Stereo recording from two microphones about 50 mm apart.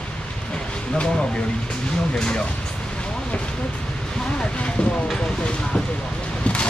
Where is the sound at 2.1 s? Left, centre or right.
Centre.